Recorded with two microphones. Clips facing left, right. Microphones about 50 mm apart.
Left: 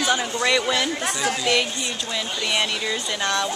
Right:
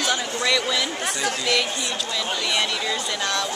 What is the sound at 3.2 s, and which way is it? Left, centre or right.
Speech, left.